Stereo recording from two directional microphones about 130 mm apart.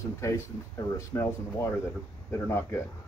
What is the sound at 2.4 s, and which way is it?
Speech, 20° left (ahead or behind).